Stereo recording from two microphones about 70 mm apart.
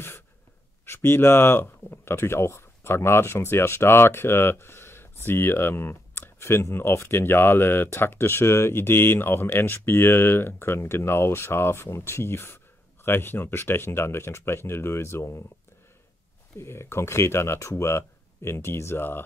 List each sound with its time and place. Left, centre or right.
0.8 s speech: left
16.5 s speech: left